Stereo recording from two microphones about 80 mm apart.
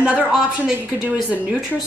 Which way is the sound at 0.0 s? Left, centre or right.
Centre.